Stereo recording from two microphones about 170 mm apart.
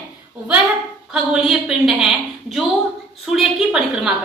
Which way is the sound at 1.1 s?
5° right (ahead or behind).